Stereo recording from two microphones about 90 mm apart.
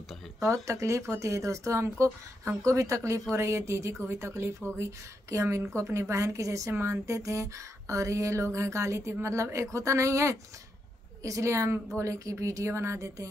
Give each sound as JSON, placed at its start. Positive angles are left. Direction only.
{"t": 0.4, "sound": "speech", "side_deg": -35}